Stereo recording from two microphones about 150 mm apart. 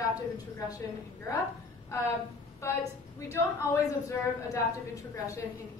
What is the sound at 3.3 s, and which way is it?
A woman's voice, 20° left (ahead or behind).